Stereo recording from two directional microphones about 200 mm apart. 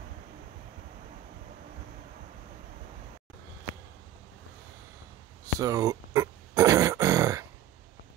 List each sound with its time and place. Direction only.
5.4 s grunt: 15° right (ahead or behind)